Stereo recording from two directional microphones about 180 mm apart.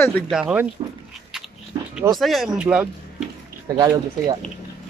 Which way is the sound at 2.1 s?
Centre (ahead or behind).